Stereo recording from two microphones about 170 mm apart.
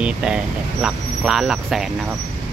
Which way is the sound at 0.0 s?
5° right (ahead or behind).